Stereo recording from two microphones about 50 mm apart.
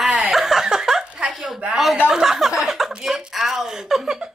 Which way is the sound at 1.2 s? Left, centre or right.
Right.